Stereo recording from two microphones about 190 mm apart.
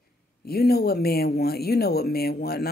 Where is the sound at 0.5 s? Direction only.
55° left (ahead or behind).